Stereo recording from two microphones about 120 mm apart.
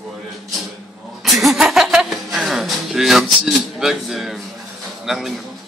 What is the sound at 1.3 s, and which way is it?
Music, centre (ahead or behind).